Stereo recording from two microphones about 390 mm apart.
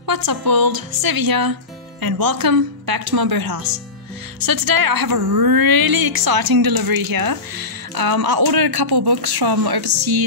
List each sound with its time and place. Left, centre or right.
0.0 s a woman's voice: right